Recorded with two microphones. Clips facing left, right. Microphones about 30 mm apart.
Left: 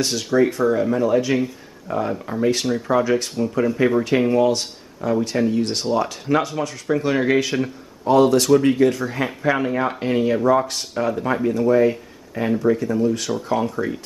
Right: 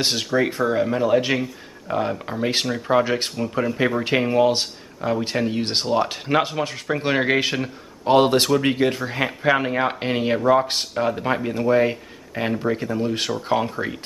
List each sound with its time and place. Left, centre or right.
0.0 s speech: right
3.3 s speech: centre; by 8.5 s right
8.6 s speech: right